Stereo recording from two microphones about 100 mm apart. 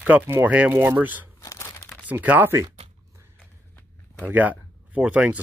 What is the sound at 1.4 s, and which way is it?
Crumpling, 30° left (ahead or behind).